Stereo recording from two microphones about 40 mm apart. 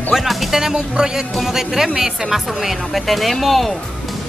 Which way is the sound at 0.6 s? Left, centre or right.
Centre.